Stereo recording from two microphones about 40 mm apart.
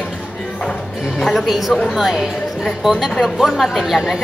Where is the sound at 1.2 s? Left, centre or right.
Centre.